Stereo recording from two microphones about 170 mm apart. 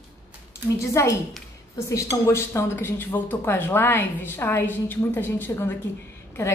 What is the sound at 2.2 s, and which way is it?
Speech, 15° left (ahead or behind).